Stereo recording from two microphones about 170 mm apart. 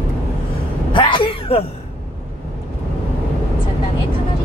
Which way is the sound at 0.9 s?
30° left (ahead or behind).